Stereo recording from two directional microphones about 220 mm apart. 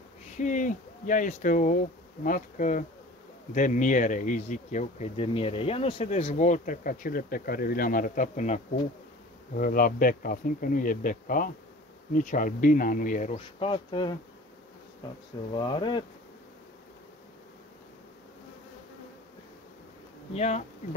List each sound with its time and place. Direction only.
0.4 s speech: 35° left (ahead or behind)
9.6 s speech: 40° left (ahead or behind); by 14.1 s 20° left (ahead or behind)
15.5 s speech: 20° left (ahead or behind)
20.3 s speech: 30° left (ahead or behind)